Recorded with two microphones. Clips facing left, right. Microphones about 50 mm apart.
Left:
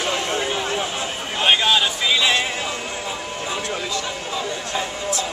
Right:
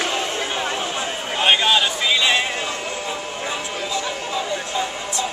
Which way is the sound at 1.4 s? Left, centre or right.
Centre.